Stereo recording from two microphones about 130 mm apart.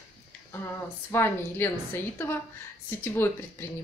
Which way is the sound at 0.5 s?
20° left (ahead or behind).